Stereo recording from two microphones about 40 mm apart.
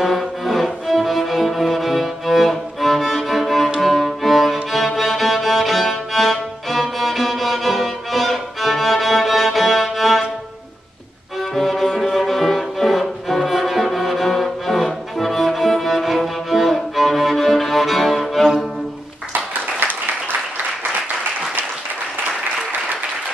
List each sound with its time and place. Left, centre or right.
0.0 s music: centre
11.5 s music: centre
19.3 s applause: right